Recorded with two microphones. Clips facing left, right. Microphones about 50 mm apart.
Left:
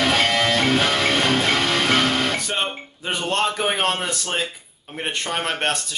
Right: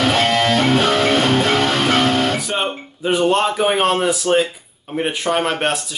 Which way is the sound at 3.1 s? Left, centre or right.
Centre.